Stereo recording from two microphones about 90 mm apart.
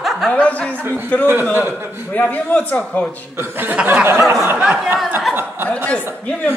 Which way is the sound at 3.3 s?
20° right (ahead or behind).